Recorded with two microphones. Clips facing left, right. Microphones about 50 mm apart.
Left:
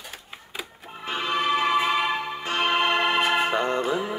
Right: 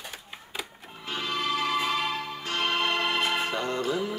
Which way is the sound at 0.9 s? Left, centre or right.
Left.